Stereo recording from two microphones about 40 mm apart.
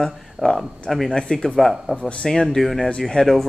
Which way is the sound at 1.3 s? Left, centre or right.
Left.